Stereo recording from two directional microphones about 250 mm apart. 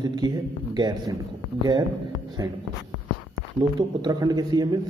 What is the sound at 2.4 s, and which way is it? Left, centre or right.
Speech, centre.